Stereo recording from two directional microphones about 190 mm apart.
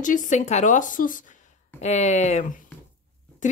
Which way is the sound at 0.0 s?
40° left (ahead or behind).